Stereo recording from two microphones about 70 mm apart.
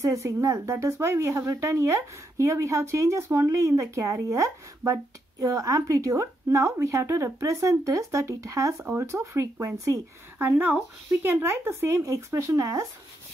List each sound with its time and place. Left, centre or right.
0.0 s speech: right
10.4 s speech: right
12.0 s speech: right